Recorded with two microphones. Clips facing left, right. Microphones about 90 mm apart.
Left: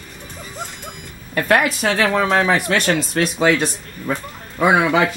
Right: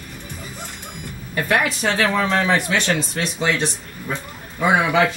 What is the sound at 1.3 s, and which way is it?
Speech, 55° left (ahead or behind).